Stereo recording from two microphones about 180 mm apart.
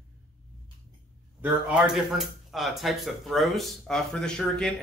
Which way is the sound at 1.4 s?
5° right (ahead or behind).